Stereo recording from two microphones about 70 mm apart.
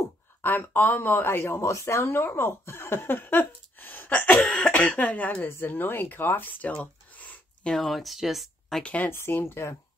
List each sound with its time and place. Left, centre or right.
0.4 s speech: left
6.7 s a sound: left
7.7 s speech: centre
8.8 s speech: left
9.1 s speech: left